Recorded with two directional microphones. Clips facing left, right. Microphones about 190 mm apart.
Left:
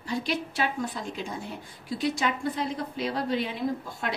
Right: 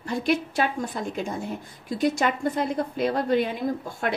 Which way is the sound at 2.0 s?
50° right (ahead or behind).